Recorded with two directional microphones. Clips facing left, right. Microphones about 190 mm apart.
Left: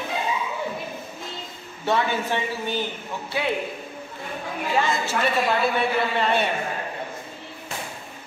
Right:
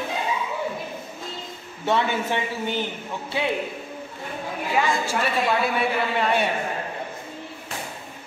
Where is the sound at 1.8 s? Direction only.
20° right (ahead or behind).